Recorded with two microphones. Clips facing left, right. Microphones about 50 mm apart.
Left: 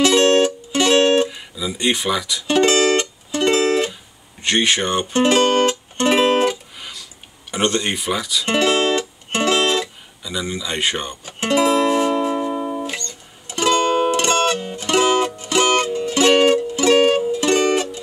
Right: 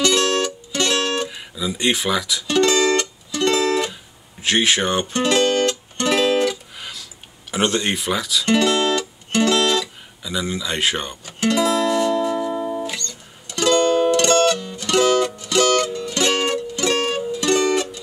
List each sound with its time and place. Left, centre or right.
0.0 s music: left
1.3 s speech: centre
2.4 s music: left
3.9 s music: centre
5.1 s speech: left
5.7 s music: centre
6.8 s a sound: centre
7.5 s speech: centre
8.5 s music: left
10.2 s speech: centre
11.2 s music: left